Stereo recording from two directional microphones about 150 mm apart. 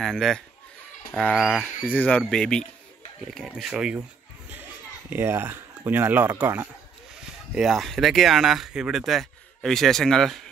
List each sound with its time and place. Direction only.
0.0 s speech: centre (ahead or behind)
1.6 s speech: 10° left (ahead or behind)
5.1 s speech: 15° right (ahead or behind)
7.2 s speech: 5° right (ahead or behind)